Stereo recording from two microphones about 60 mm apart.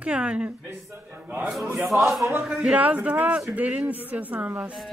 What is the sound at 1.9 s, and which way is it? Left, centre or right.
A man's voice, right.